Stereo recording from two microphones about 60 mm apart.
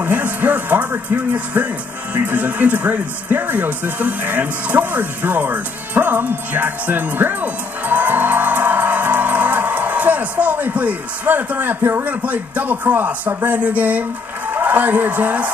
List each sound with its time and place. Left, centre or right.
0.0 s a woman's voice: right